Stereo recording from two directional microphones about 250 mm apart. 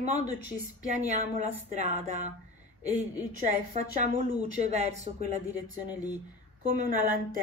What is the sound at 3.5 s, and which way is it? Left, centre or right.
A woman's voice, right.